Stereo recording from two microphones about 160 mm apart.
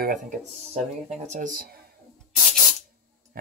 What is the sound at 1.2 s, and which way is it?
Speech, 50° right (ahead or behind).